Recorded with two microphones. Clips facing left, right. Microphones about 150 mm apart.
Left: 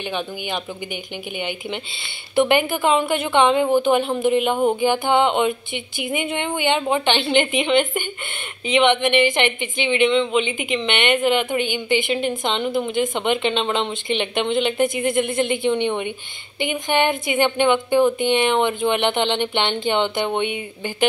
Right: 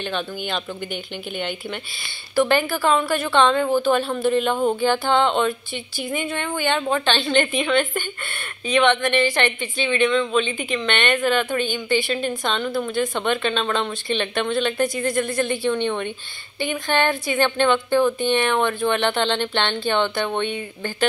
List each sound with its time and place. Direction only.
2.3 s a woman's voice: 20° left (ahead or behind)